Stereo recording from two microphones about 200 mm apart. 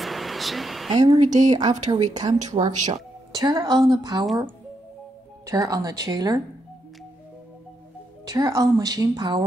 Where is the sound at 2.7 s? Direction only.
40° right (ahead or behind).